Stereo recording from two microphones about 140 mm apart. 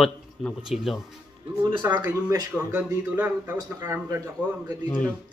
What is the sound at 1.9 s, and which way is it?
Speech, 25° right (ahead or behind).